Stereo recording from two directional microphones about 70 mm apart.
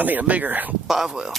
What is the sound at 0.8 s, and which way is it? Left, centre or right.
Speech, centre.